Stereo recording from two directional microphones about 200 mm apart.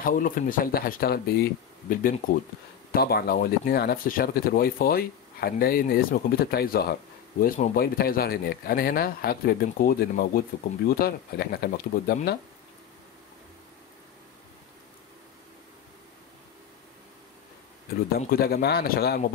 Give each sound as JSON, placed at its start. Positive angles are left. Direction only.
{"t": 0.0, "sound": "speech", "side_deg": 40}
{"t": 18.2, "sound": "speech", "side_deg": 50}